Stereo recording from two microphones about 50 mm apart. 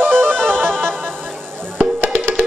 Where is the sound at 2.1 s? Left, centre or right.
Right.